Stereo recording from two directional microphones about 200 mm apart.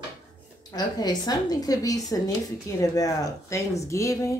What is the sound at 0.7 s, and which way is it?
A woman's voice, 20° left (ahead or behind).